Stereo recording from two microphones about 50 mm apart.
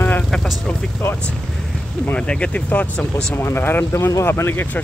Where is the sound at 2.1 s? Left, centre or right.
Left.